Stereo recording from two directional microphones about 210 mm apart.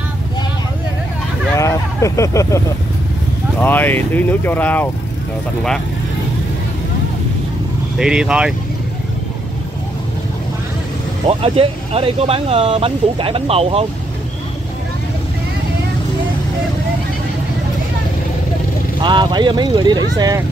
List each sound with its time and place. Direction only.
1.6 s vehicle: 15° left (ahead or behind)
3.5 s speech: 10° left (ahead or behind)
8.0 s speech: 5° right (ahead or behind)
11.2 s speech: 30° right (ahead or behind)
18.9 s speech: 20° right (ahead or behind)